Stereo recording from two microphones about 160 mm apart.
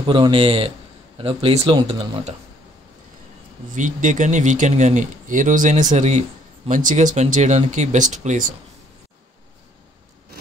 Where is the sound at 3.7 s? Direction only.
50° right (ahead or behind).